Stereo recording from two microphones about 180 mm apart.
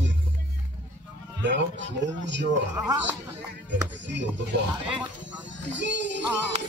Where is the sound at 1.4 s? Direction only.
80° right.